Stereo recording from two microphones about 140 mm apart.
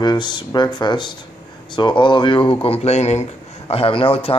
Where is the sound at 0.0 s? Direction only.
30° left (ahead or behind).